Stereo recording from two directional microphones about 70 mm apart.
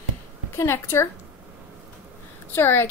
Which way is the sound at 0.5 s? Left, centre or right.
Left.